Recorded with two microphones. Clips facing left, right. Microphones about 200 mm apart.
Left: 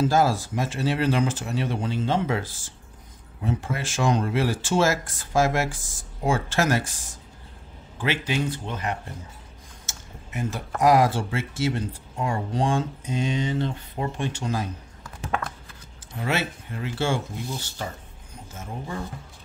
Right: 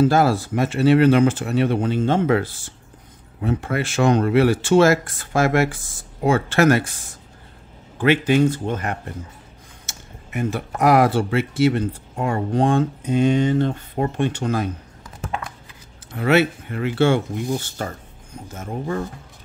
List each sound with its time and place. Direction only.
0.0 s speech: 65° right (ahead or behind)
8.0 s speech: 55° right (ahead or behind)
9.8 s typing: 65° right (ahead or behind)
10.8 s speech: 65° right (ahead or behind)
16.1 s speech: 65° right (ahead or behind)